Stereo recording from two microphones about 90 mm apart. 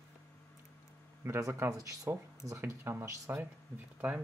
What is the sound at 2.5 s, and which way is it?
Speech, 30° right (ahead or behind).